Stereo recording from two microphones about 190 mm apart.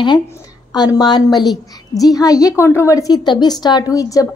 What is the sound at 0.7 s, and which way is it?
A woman's voice, 20° left (ahead or behind).